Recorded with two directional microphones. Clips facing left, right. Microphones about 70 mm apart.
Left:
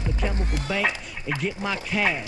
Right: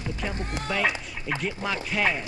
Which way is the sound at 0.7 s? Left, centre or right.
Centre.